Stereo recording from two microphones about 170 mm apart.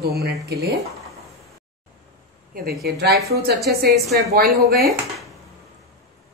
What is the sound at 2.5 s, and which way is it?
A woman's voice, 60° right (ahead or behind).